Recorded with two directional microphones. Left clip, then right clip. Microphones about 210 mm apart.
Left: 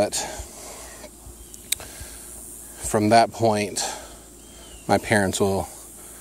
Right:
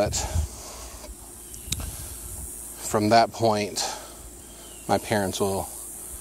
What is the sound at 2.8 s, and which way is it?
A man's voice, 25° left (ahead or behind).